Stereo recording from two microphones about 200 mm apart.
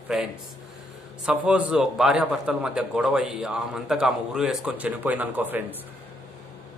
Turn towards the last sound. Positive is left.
turn(degrees=-10)  # may be behind; listen again after turning